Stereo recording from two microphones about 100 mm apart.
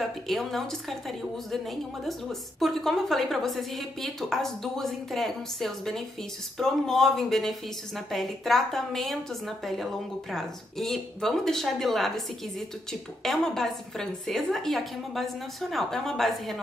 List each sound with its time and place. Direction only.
0.0 s a woman's voice: centre (ahead or behind)
13.2 s a woman's voice: 5° left (ahead or behind)